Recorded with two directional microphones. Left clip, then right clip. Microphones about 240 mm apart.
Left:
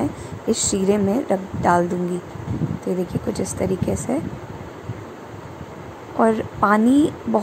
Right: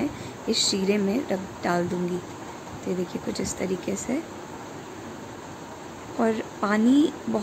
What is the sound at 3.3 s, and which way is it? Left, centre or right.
Speech, centre.